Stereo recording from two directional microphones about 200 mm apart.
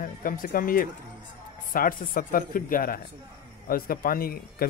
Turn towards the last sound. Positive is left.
turn(degrees=50)  # may be behind; listen again after turning